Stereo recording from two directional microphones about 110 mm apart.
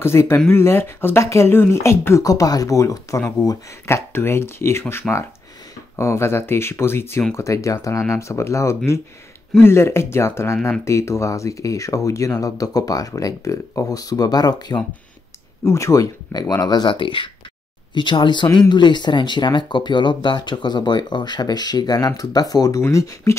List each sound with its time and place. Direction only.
0.0 s speech: 25° left (ahead or behind)
15.6 s speech: 30° left (ahead or behind)